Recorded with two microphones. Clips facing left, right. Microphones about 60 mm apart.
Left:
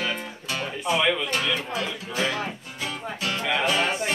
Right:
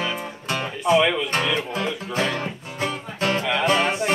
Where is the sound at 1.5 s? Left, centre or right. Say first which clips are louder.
Right 4 dB; right.